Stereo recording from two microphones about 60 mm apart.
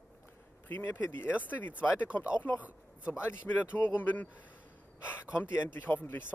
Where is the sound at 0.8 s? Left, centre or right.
Left.